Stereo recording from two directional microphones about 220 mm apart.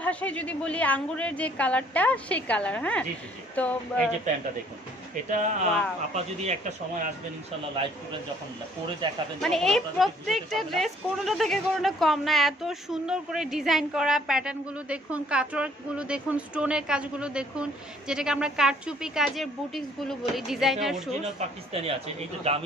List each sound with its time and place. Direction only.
0.0 s a woman's voice: 5° left (ahead or behind)
5.3 s speech: 35° right (ahead or behind)
9.0 s a man's voice: 20° right (ahead or behind)
9.4 s a woman's voice: centre (ahead or behind)
21.4 s a man's voice: 30° right (ahead or behind)